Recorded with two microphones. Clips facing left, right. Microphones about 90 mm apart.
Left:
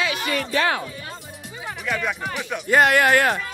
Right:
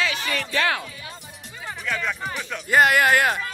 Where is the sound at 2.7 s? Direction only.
Centre (ahead or behind).